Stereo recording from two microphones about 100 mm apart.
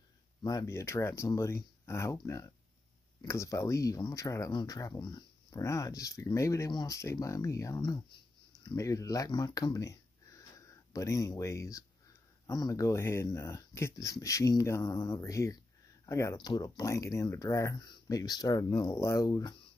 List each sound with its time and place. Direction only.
0.4 s speech: 40° left (ahead or behind)
0.7 s speech: 25° left (ahead or behind); by 5.6 s 45° left (ahead or behind)
5.6 s speech: 35° left (ahead or behind)
6.7 s speech: 45° left (ahead or behind)
7.0 s speech: 30° left (ahead or behind)
16.3 s speech: 45° left (ahead or behind)
17.7 s speech: 45° left (ahead or behind)